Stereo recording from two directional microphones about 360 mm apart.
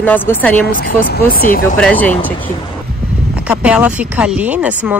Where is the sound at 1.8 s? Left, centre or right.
Centre.